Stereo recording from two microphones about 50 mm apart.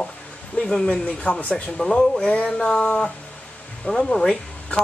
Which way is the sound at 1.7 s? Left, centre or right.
Centre.